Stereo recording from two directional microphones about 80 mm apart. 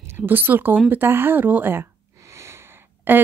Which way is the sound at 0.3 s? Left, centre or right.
Right.